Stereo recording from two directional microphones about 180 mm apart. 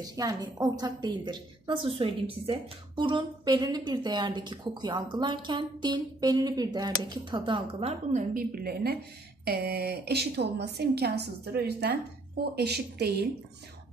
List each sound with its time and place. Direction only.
0.0 s a woman's voice: 20° right (ahead or behind)
8.1 s a woman's voice: 50° right (ahead or behind)